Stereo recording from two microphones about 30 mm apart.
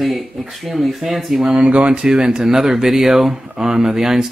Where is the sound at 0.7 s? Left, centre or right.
Centre.